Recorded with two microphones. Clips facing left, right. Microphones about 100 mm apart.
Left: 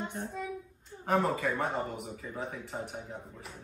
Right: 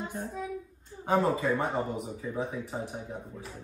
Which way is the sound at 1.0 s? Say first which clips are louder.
Right 3 dB; 20° right (ahead or behind).